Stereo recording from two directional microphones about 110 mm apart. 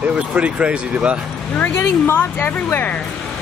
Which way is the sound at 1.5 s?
15° left (ahead or behind).